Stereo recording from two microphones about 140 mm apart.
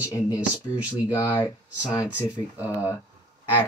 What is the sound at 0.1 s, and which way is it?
Speech, 25° left (ahead or behind).